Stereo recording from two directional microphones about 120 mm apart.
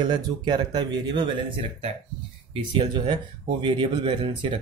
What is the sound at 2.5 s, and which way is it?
Speech, 40° right (ahead or behind).